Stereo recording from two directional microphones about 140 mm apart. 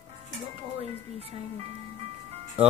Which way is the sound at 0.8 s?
45° right (ahead or behind).